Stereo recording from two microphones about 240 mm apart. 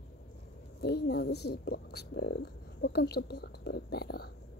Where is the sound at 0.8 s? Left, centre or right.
Left.